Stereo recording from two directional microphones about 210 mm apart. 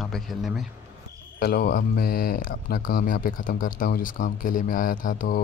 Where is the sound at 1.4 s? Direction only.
50° left (ahead or behind).